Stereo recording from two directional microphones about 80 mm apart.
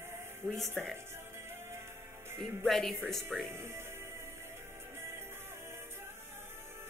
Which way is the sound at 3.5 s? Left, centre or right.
Right.